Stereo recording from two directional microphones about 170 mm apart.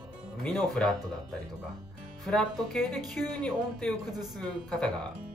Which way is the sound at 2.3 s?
5° left (ahead or behind).